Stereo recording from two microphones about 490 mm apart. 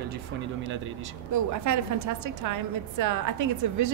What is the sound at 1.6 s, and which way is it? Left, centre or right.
A woman's voice, right.